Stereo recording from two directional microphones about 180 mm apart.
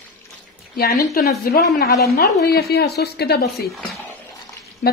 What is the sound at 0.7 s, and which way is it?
A woman's voice, 55° left (ahead or behind).